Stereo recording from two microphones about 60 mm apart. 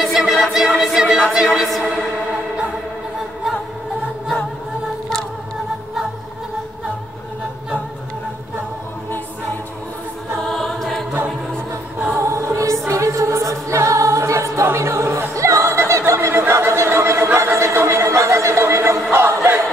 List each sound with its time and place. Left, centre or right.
0.0 s music: centre
10.4 s music: centre
12.2 s music: right
16.1 s a sound: right
19.0 s choir: right